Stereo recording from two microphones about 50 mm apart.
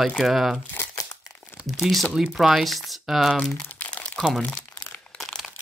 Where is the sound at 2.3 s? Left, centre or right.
Centre.